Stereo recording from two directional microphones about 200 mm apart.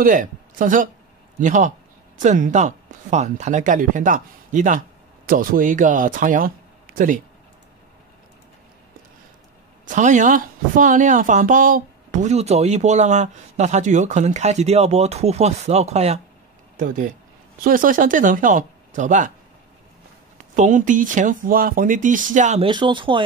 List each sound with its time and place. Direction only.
0.0 s speech: 40° right (ahead or behind)
9.8 s speech: 40° right (ahead or behind)
20.5 s speech: 40° right (ahead or behind)
22.7 s speech: 25° right (ahead or behind)